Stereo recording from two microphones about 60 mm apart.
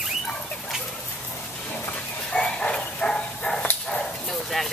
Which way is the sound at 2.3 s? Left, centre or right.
Centre.